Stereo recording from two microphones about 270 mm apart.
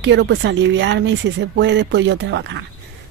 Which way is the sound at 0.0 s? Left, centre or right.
Right.